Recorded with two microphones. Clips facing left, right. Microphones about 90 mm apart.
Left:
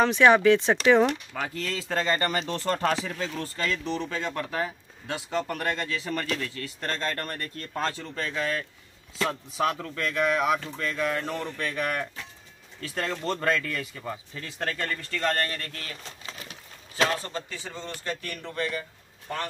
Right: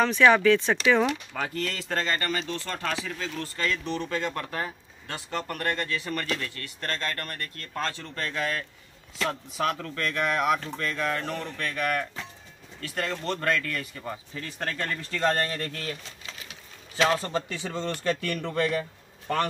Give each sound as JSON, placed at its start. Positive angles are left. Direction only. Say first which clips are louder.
{"t": 0.0, "sound": "speech", "louder": "left 1 dB", "side_deg": 20}
{"t": 1.0, "sound": "speech", "louder": "left 1 dB", "side_deg": 0}
{"t": 2.1, "sound": "speech", "louder": "left 2 dB", "side_deg": 30}
{"t": 3.1, "sound": "speech", "louder": "left 1 dB", "side_deg": 20}
{"t": 3.8, "sound": "speech", "louder": "right 1 dB", "side_deg": 0}
{"t": 6.2, "sound": "speech", "louder": "left 1 dB", "side_deg": 0}
{"t": 6.5, "sound": "speech", "louder": "left 1 dB", "side_deg": 20}
{"t": 8.0, "sound": "speech", "louder": "left 1 dB", "side_deg": 5}
{"t": 13.1, "sound": "speech", "louder": "left 1 dB", "side_deg": 10}
{"t": 14.6, "sound": "speech", "louder": "left 1 dB", "side_deg": -5}
{"t": 16.9, "sound": "a man's voice", "louder": "right 2 dB", "side_deg": -35}
{"t": 17.5, "sound": "speech", "louder": "right 6 dB", "side_deg": -75}
{"t": 18.0, "sound": "a man's voice", "louder": "right 5 dB", "side_deg": -85}
{"t": 18.8, "sound": "a sound", "louder": "right 5 dB", "side_deg": -65}